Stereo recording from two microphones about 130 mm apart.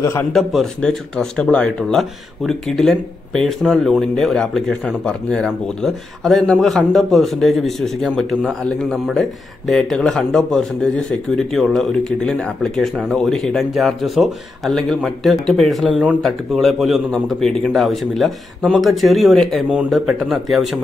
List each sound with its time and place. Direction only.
0.0 s a man's voice: 20° left (ahead or behind)
0.3 s speech: centre (ahead or behind)